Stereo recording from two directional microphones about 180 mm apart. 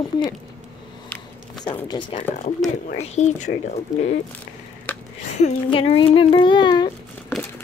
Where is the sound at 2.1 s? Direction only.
30° left (ahead or behind).